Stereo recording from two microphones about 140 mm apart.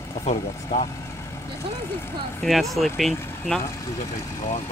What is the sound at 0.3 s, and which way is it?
Speech, 55° left (ahead or behind).